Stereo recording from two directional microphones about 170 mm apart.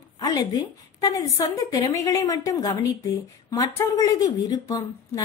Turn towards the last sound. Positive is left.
turn(degrees=20)  # may be behind; listen again after turning